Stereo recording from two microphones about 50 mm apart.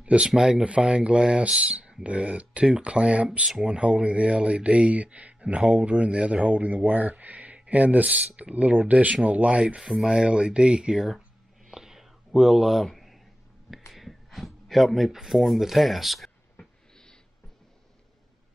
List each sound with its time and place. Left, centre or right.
0.0 s speech: right
9.8 s speech: centre
10.0 s speech: right
11.7 s a sound: centre
13.9 s speech: centre
16.5 s a sound: centre